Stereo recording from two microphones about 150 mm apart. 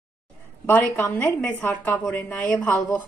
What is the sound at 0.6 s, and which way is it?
A woman's voice, 15° left (ahead or behind).